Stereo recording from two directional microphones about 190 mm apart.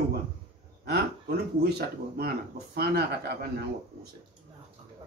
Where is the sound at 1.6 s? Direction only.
55° right (ahead or behind).